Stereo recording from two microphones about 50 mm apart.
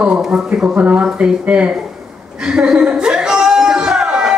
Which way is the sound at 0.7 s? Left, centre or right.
Right.